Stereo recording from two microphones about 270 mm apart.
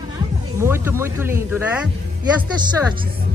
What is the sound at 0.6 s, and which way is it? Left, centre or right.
Speech, centre.